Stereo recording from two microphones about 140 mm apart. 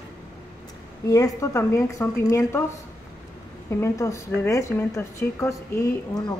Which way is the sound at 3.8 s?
20° left (ahead or behind).